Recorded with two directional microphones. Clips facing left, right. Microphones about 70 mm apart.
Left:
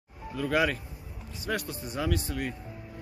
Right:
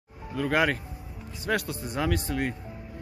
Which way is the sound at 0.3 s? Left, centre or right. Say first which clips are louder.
Right 2 dB; right.